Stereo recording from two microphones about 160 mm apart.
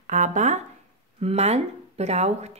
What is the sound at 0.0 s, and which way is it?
Speech, 50° right (ahead or behind).